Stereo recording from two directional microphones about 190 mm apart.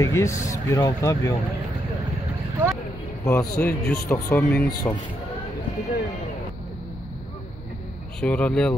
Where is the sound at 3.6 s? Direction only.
10° left (ahead or behind).